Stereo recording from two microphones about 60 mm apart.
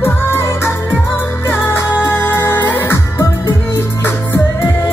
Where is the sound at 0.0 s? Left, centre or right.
Left.